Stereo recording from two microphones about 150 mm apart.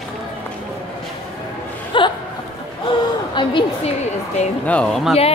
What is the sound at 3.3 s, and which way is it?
Speech, 35° left (ahead or behind).